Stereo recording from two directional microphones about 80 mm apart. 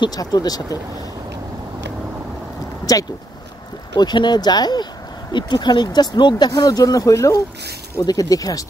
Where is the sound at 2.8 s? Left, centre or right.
Left.